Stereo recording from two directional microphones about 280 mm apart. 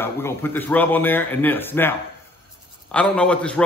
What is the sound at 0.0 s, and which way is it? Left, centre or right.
A man's voice, centre.